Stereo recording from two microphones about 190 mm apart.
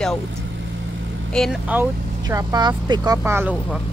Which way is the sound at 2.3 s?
20° right (ahead or behind).